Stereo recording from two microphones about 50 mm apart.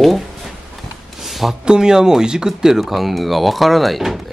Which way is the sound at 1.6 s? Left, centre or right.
Centre.